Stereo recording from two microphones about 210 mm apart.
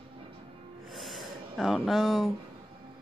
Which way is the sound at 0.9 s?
Centre (ahead or behind).